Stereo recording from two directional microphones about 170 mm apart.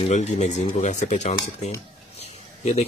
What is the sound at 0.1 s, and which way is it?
A man's voice, 45° left (ahead or behind).